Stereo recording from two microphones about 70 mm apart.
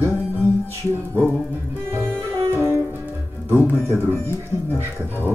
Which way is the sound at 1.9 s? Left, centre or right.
Right.